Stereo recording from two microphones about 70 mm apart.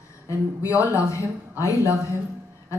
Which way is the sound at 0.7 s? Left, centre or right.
Left.